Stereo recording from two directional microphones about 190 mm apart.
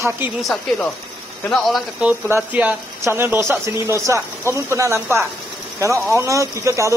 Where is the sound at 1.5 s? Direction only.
Centre (ahead or behind).